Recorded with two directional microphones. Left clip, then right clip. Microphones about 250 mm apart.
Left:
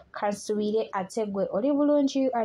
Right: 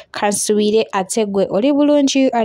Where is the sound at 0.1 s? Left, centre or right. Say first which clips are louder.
Right 12 dB; right.